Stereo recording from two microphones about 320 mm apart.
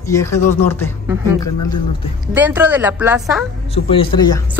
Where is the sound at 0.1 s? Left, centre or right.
Centre.